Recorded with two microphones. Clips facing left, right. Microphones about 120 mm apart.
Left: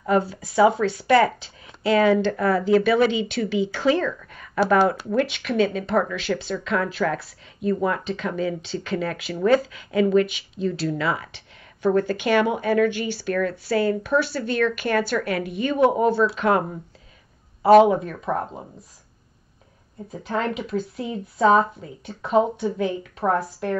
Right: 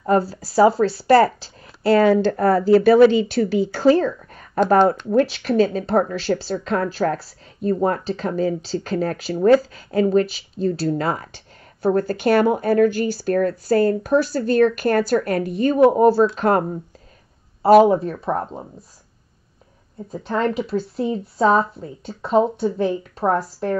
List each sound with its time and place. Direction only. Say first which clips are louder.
0.0 s speech: right 3 dB; 35° right (ahead or behind)
17.8 s speech: right 3 dB; 35° right (ahead or behind)
20.1 s speech: right 4 dB; 40° right (ahead or behind)